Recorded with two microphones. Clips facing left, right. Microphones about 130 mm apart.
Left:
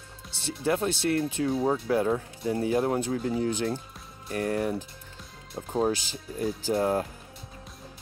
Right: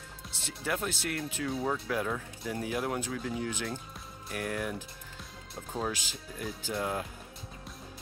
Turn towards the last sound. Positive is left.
turn(degrees=40)  # may be behind; listen again after turning